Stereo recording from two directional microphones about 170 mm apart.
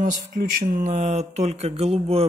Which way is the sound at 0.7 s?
45° right (ahead or behind).